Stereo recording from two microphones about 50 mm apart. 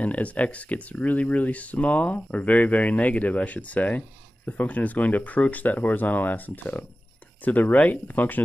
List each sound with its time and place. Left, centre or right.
0.0 s speech: left